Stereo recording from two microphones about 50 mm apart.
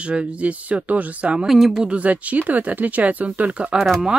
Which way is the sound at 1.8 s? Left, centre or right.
Right.